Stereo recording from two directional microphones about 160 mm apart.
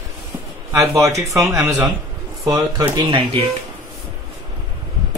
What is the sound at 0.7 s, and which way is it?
Speech, 20° right (ahead or behind).